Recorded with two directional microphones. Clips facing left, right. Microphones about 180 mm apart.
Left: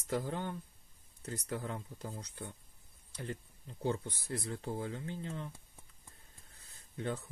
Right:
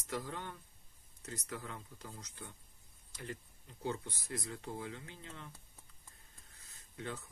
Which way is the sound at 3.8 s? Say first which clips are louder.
Left 4 dB; 30° left (ahead or behind).